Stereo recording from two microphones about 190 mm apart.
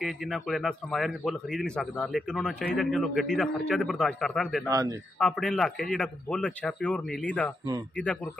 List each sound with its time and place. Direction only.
0.0 s speech: centre (ahead or behind)
4.6 s speech: 20° right (ahead or behind)
5.2 s speech: 5° left (ahead or behind)